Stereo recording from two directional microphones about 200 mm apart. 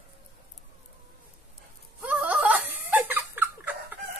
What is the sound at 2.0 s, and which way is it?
Laughter, 5° right (ahead or behind).